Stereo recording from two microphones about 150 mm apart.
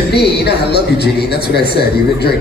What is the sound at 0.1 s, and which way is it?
A man's voice, 90° left.